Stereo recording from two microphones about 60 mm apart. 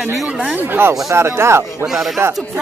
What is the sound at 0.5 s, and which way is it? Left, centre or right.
Speech, right.